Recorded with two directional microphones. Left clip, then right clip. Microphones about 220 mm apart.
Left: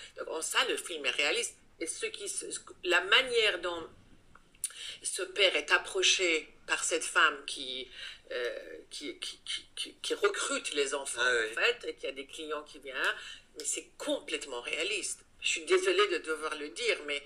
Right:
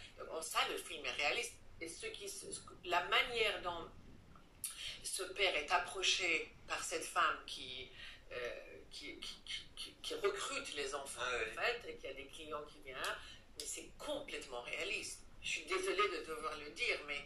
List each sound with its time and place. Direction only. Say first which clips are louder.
0.3 s speech: left 8 dB; 45° left (ahead or behind)
4.7 s speech: left 6 dB; 40° left (ahead or behind)